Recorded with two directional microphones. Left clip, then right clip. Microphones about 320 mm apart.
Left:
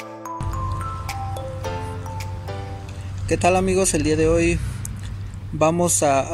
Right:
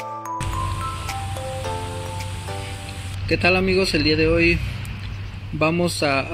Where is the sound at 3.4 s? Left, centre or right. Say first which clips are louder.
Left 1 dB; centre.